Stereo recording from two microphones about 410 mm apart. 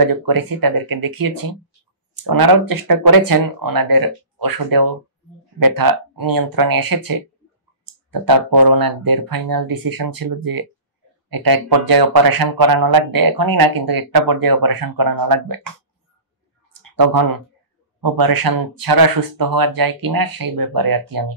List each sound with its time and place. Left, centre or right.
0.0 s speech: right
16.9 s speech: right